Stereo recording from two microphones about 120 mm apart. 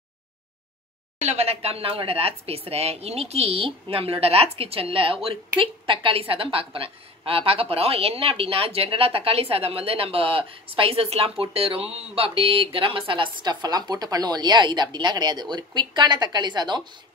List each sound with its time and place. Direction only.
1.2 s a woman's voice: 65° right (ahead or behind); by 16.8 s 40° right (ahead or behind)